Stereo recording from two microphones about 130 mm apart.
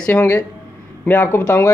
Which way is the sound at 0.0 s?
15° left (ahead or behind).